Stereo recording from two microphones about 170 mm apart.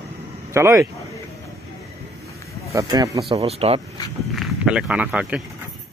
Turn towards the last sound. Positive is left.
turn(degrees=-5)  # may be behind; listen again after turning